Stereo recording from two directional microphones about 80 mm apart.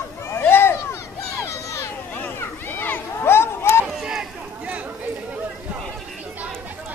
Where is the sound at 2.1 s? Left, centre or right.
Left.